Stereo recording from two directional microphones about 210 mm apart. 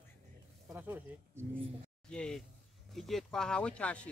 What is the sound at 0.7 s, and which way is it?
Speech, 10° right (ahead or behind).